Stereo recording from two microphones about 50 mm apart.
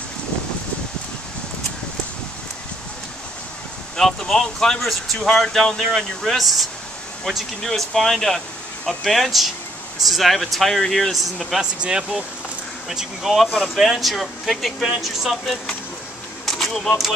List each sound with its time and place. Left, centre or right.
3.9 s speech: centre
11.8 s speech: centre
16.4 s a sound: centre